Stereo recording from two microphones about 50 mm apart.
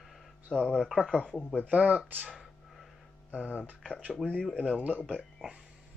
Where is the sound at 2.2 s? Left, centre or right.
Centre.